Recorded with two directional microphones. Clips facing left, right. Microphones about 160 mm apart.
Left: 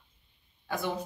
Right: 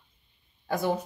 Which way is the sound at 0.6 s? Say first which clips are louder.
Right 5 dB; 40° right (ahead or behind).